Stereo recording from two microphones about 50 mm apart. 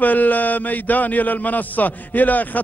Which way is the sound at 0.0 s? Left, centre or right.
Left.